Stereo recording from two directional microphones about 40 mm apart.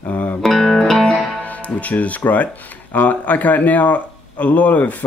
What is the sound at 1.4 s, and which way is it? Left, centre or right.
Speech, left.